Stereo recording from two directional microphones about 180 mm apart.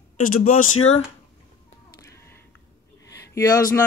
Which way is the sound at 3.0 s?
20° left (ahead or behind).